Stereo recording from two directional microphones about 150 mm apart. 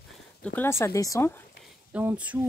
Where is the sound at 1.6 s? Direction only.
10° right (ahead or behind).